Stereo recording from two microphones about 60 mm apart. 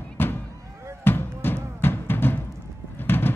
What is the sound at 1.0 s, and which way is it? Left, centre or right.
Music, left.